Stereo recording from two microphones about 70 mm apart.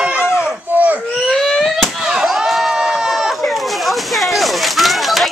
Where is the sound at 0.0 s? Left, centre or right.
Centre.